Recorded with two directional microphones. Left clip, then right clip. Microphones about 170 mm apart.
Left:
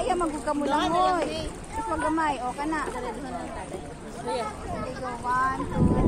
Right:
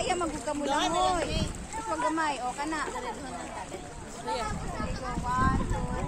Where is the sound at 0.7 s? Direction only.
15° right (ahead or behind).